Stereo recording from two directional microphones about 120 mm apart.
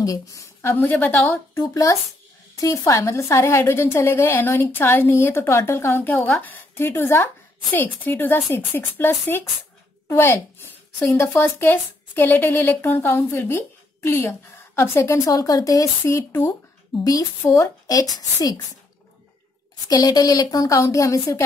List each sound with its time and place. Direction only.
0.0 s a woman's voice: 30° left (ahead or behind)
19.9 s a woman's voice: 35° left (ahead or behind)